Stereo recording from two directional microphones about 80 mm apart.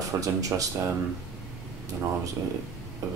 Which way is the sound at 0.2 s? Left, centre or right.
Right.